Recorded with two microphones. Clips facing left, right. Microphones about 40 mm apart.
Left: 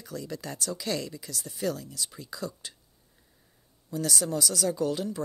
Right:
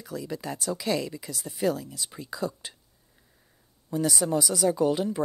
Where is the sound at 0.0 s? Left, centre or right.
Centre.